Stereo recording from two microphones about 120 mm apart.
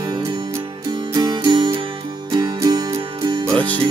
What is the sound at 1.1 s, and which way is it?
Music, 35° right (ahead or behind).